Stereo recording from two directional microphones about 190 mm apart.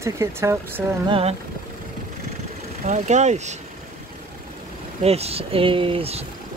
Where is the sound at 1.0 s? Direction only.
30° right (ahead or behind).